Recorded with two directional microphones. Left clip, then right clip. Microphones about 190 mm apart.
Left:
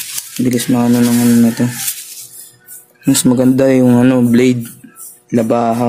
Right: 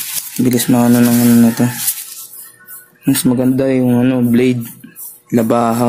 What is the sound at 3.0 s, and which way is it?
Speech, centre (ahead or behind).